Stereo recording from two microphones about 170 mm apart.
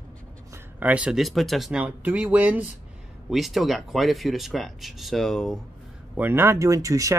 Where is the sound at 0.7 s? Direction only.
10° right (ahead or behind).